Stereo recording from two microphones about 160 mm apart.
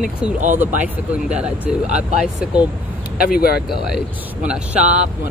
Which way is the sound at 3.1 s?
65° left (ahead or behind).